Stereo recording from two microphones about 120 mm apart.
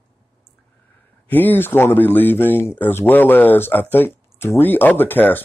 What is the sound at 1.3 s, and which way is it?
Speech, 15° left (ahead or behind).